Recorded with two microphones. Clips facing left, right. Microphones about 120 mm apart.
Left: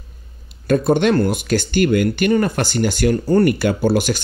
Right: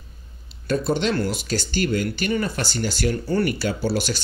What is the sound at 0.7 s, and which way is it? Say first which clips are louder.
Speech: left 7 dB; 55° left (ahead or behind).